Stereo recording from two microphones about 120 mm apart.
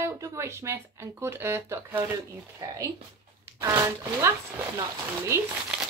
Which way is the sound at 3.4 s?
25° right (ahead or behind).